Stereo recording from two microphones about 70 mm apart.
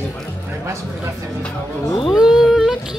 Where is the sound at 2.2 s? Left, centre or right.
Centre.